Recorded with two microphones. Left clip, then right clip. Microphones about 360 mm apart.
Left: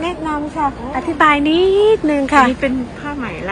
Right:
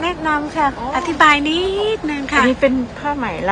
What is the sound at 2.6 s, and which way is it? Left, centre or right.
Speech, right.